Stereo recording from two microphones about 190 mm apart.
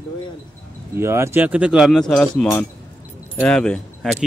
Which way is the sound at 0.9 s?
15° right (ahead or behind).